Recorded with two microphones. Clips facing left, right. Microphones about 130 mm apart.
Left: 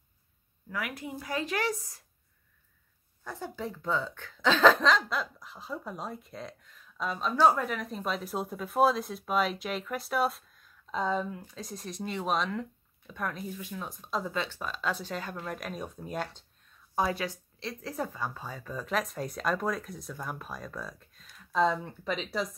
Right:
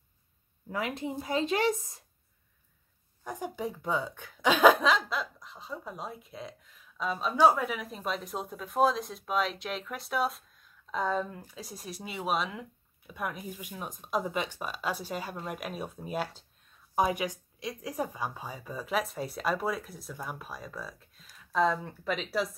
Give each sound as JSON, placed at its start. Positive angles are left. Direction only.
{"t": 0.7, "sound": "a woman's voice", "side_deg": -25}
{"t": 3.3, "sound": "speech", "side_deg": -15}